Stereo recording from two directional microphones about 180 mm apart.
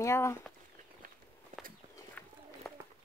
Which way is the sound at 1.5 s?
50° right (ahead or behind).